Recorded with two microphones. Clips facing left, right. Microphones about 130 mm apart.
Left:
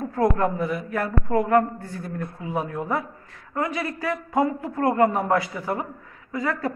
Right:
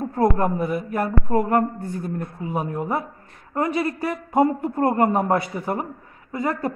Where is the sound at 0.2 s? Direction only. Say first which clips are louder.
Right 1 dB; 30° right (ahead or behind).